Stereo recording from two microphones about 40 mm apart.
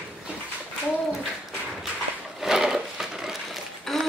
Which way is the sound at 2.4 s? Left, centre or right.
Centre.